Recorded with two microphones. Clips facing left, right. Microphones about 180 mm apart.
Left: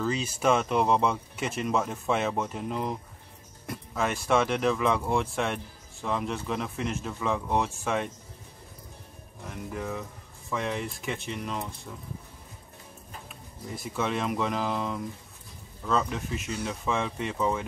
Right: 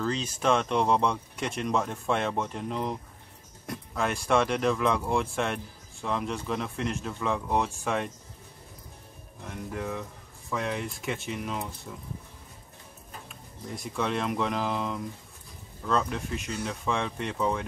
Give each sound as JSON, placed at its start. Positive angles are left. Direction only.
{"t": 0.0, "sound": "speech", "side_deg": 5}
{"t": 9.5, "sound": "speech", "side_deg": 0}
{"t": 13.3, "sound": "speech", "side_deg": 0}